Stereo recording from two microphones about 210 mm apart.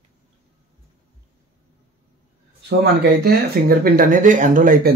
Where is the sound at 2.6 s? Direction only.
50° right (ahead or behind).